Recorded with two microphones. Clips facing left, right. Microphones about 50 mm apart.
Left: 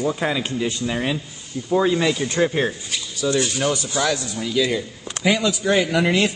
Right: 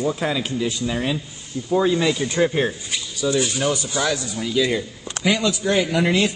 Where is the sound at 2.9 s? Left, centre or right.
Centre.